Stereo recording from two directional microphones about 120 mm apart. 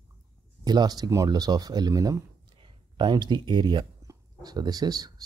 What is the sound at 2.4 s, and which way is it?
Speech, 40° right (ahead or behind).